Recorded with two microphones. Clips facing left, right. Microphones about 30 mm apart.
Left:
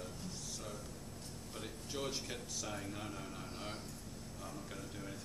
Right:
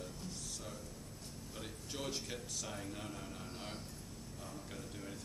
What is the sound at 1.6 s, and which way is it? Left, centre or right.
Speech, centre.